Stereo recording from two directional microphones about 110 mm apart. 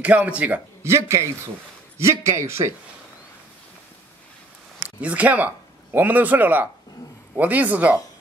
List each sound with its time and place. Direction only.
0.0 s speech: 15° right (ahead or behind)
0.8 s a man's voice: 25° right (ahead or behind)
4.8 s speech: 15° right (ahead or behind)